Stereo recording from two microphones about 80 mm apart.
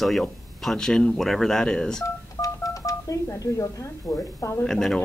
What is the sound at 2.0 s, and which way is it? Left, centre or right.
Speech, left.